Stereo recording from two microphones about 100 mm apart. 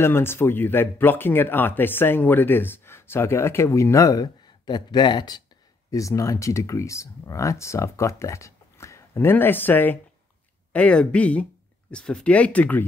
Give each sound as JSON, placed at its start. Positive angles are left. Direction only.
{"t": 0.0, "sound": "speech", "side_deg": 25}
{"t": 5.9, "sound": "speech", "side_deg": 35}